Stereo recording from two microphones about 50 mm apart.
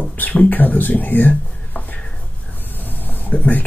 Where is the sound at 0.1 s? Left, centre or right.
Left.